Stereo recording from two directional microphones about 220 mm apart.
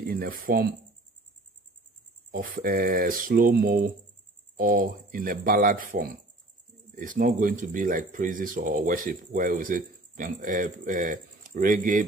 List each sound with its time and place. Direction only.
0.1 s speech: 40° right (ahead or behind)
2.3 s speech: 40° right (ahead or behind)